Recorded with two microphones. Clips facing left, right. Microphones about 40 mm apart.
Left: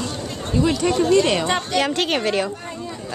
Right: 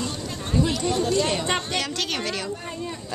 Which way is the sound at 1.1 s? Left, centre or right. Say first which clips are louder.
Left 7 dB; left.